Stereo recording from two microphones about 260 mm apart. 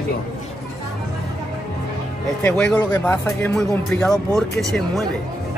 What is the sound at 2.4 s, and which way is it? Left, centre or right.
Speech, centre.